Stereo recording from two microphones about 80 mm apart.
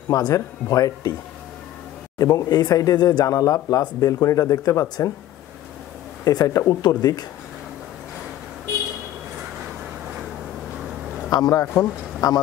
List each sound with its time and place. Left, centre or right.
0.1 s speech: left
2.1 s speech: left
6.2 s speech: left
11.2 s a man's voice: left
11.6 s a man's voice: left
12.2 s speech: left